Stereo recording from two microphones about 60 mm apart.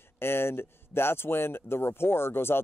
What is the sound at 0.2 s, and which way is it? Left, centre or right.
Speech, left.